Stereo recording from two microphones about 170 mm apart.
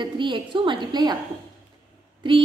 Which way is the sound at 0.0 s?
30° right (ahead or behind).